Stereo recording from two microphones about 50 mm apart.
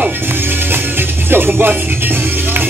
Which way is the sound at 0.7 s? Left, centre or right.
Right.